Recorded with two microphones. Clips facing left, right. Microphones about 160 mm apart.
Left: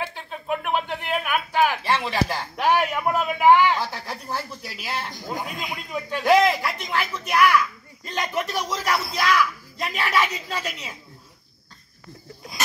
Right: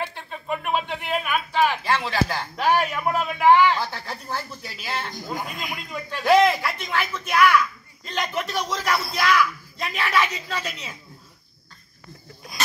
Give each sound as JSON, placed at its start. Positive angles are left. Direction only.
{"t": 0.0, "sound": "a sound", "side_deg": 5}
{"t": 3.9, "sound": "speech", "side_deg": 0}
{"t": 5.3, "sound": "a man's voice", "side_deg": 25}
{"t": 5.9, "sound": "speech", "side_deg": 15}
{"t": 6.6, "sound": "a woman's voice", "side_deg": 0}